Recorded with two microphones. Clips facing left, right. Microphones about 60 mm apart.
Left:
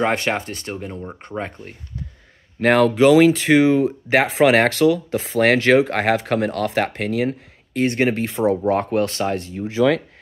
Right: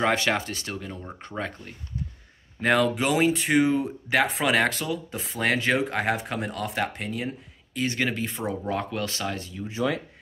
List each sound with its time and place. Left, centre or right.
0.3 s speech: left
2.6 s speech: left
2.9 s speech: left
9.7 s speech: left